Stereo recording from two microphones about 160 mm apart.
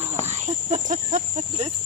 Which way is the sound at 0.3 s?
50° right (ahead or behind).